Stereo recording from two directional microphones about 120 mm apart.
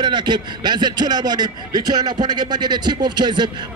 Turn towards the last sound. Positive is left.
turn(degrees=-40)  # may be behind; listen again after turning